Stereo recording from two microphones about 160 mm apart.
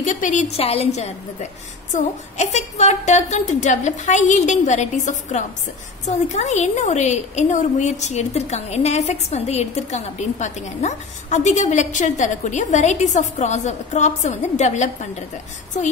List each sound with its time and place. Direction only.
0.0 s a woman's voice: 50° left (ahead or behind)